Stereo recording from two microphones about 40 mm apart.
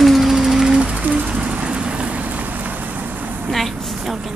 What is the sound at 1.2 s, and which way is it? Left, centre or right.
Rain, right.